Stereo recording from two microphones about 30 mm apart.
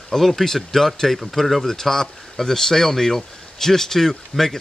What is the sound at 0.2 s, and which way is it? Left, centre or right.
Speech, centre.